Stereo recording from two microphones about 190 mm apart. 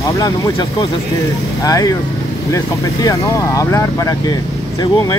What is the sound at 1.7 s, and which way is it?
Speech, 20° left (ahead or behind).